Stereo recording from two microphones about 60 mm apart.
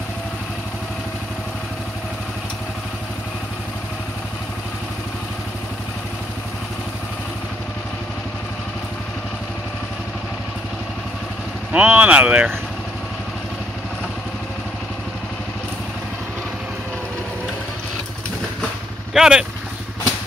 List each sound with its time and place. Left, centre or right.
11.7 s speech: right
19.1 s speech: centre